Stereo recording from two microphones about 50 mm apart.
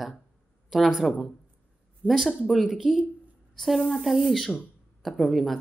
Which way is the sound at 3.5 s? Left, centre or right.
Centre.